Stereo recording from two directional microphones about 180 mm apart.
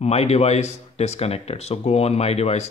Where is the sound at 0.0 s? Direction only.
35° left (ahead or behind).